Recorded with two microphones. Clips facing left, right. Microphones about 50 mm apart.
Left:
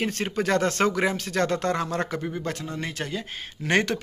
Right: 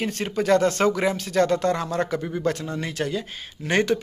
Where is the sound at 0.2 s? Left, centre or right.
Left.